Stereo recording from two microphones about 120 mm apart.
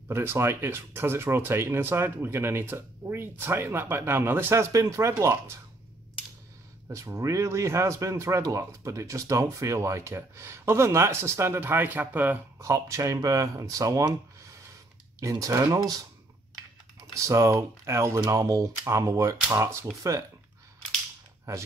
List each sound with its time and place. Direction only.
0.1 s speech: 20° right (ahead or behind)
6.9 s speech: 25° right (ahead or behind)
15.1 s speech: 30° right (ahead or behind)
17.1 s speech: 25° right (ahead or behind)